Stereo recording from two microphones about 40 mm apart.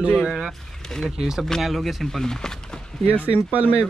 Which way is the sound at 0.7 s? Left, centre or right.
Centre.